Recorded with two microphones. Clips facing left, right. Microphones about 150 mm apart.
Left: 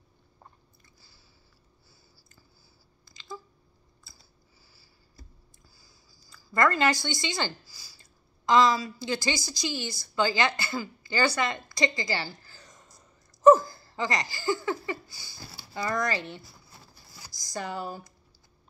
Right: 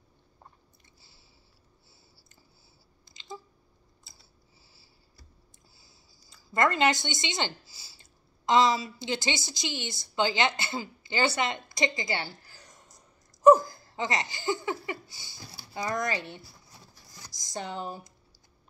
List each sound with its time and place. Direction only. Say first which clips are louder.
3.1 s a sound: left 1 dB; 20° right (ahead or behind)
6.2 s a woman's voice: left 1 dB; 20° right (ahead or behind)
13.4 s laughter: left 1 dB; 15° right (ahead or behind)
17.3 s a woman's voice: left 2 dB; 20° right (ahead or behind)